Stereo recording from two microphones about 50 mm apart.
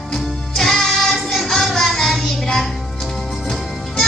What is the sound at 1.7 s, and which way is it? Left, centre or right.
Child singing, centre.